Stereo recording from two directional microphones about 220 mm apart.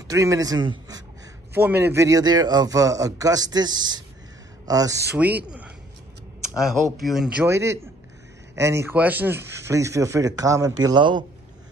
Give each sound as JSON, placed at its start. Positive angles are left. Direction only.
{"t": 0.1, "sound": "a man's voice", "side_deg": -15}